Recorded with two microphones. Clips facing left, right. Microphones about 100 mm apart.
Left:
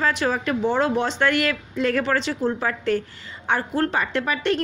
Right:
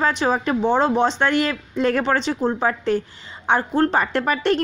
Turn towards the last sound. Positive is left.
turn(degrees=-45)  # may be behind; listen again after turning